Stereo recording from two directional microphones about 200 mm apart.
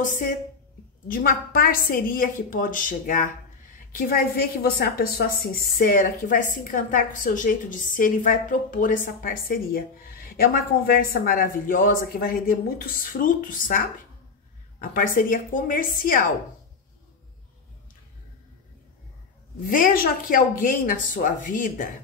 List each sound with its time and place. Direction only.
1.0 s a woman's voice: 45° left (ahead or behind)
19.7 s a woman's voice: 45° left (ahead or behind)